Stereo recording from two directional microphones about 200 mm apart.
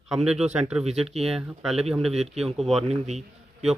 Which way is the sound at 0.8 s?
30° right (ahead or behind).